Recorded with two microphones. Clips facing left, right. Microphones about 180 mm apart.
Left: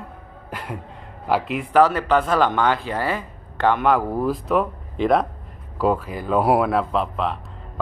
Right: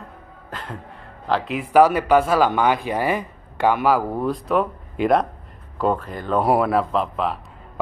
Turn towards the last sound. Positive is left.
turn(degrees=0)  # may be behind; listen again after turning